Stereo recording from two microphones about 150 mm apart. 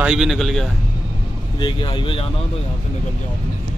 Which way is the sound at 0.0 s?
5° right (ahead or behind).